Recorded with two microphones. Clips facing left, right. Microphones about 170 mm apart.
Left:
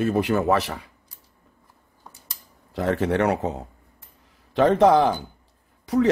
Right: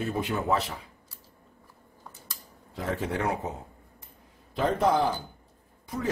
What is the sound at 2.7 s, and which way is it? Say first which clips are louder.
Speech: left 8 dB; 75° left (ahead or behind).